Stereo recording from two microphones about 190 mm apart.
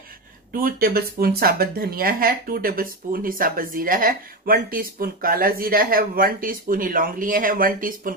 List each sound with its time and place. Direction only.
0.5 s speech: 50° right (ahead or behind)